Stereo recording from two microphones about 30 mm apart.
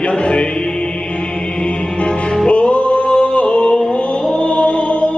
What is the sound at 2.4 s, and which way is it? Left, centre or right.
Music, left.